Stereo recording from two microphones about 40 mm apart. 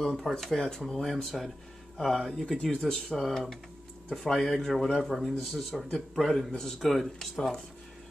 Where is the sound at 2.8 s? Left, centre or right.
Centre.